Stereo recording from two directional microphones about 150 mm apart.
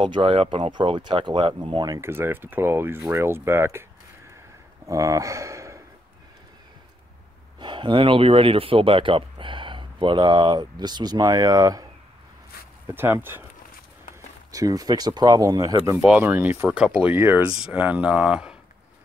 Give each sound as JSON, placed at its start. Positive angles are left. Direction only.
{"t": 0.1, "sound": "speech", "side_deg": -35}
{"t": 2.0, "sound": "speech", "side_deg": -15}
{"t": 4.8, "sound": "speech", "side_deg": -20}
{"t": 7.5, "sound": "speech", "side_deg": -30}
{"t": 12.8, "sound": "speech", "side_deg": -15}
{"t": 14.5, "sound": "speech", "side_deg": -25}
{"t": 16.0, "sound": "speech", "side_deg": -10}
{"t": 16.6, "sound": "speech", "side_deg": -5}